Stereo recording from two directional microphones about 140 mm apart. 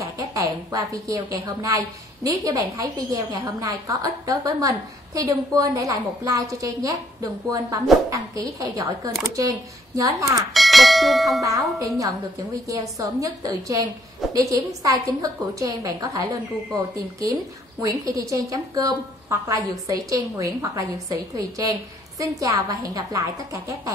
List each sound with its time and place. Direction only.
0.0 s a woman's voice: 25° right (ahead or behind)
10.5 s bell: centre (ahead or behind)
11.4 s a woman's voice: 25° right (ahead or behind)